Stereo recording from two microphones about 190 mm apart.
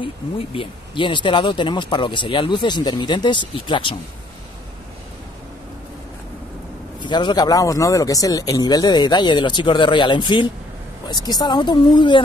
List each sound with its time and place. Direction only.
0.6 s speech: 25° left (ahead or behind)
7.0 s speech: 25° left (ahead or behind)